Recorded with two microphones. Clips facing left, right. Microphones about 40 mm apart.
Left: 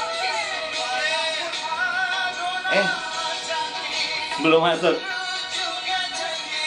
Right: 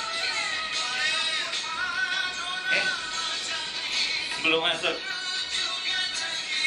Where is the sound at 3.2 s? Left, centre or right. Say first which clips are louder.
Left 4 dB; left.